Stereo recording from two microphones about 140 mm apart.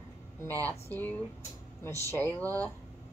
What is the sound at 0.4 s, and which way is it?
Speech, 15° left (ahead or behind).